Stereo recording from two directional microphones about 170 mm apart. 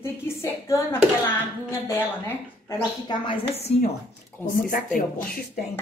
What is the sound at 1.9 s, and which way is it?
Speech, 15° left (ahead or behind).